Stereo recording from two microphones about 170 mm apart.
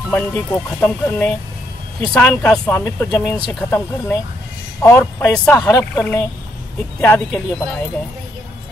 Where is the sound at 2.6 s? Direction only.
15° left (ahead or behind).